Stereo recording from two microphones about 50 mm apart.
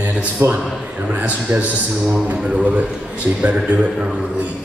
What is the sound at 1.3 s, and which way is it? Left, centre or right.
Speech, right.